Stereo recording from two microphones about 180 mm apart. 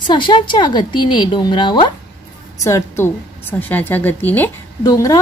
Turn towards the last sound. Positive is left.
turn(degrees=20)  # may be behind; listen again after turning